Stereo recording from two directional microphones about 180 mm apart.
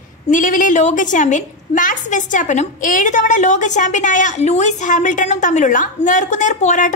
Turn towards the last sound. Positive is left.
turn(degrees=45)  # may be behind; listen again after turning